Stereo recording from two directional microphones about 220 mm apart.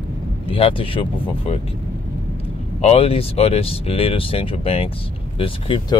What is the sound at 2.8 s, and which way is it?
Speech, 25° left (ahead or behind).